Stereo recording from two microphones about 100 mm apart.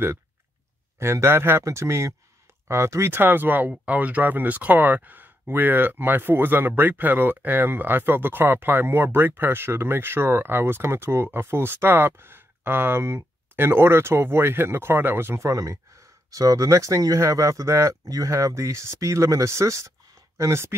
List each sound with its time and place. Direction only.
0.9 s speech: 25° right (ahead or behind)